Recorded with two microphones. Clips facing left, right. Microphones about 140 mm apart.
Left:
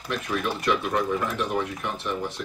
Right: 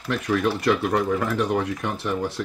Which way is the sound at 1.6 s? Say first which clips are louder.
Right 3 dB; 75° right (ahead or behind).